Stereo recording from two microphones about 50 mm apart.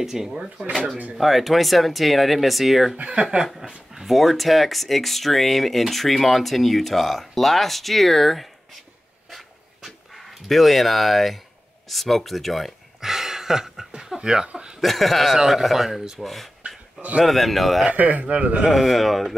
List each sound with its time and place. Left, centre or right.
0.0 s speech: centre
3.0 s a man's voice: centre
3.9 s speech: centre
9.3 s dog: centre
11.9 s speech: centre
13.0 s chuckle: centre
14.8 s speech: centre
16.2 s speech: centre
17.8 s a man's voice: right
18.7 s speech: centre